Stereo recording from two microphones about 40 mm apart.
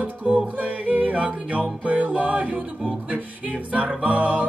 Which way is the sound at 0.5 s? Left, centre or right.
Right.